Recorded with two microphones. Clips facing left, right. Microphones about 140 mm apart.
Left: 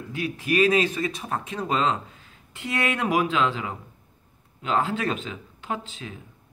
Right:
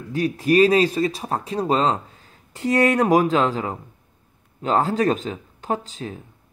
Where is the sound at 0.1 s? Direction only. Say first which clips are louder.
Right 7 dB; 40° right (ahead or behind).